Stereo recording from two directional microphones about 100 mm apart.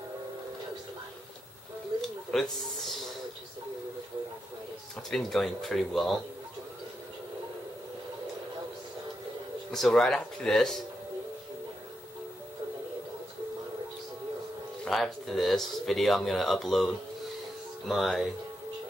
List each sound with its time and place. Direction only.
2.0 s a sound: 5° left (ahead or behind)
5.1 s speech: 5° left (ahead or behind)
9.7 s speech: 5° left (ahead or behind)
14.9 s speech: centre (ahead or behind)